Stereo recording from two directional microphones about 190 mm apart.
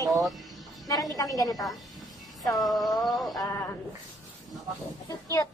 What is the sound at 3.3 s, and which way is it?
Speech, 15° left (ahead or behind).